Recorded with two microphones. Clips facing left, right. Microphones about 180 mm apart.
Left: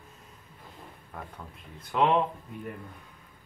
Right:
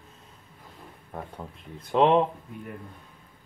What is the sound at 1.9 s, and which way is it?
Speech, 30° right (ahead or behind).